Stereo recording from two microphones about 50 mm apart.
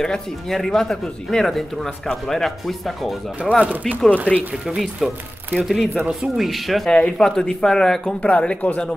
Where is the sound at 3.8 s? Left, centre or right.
Centre.